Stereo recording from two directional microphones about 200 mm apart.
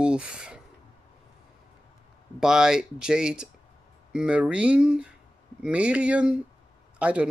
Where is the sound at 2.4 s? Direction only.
5° right (ahead or behind).